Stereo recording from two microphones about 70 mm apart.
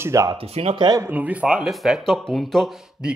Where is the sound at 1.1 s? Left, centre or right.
Right.